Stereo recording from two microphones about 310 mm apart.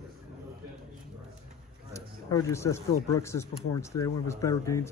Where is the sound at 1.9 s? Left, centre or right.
Centre.